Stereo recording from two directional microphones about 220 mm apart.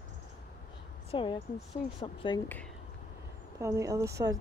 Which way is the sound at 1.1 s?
20° left (ahead or behind).